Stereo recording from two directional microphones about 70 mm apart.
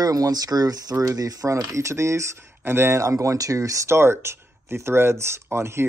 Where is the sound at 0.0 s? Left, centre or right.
Right.